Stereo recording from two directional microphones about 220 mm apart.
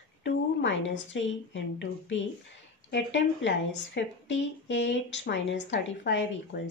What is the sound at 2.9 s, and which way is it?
Speech, 55° left (ahead or behind).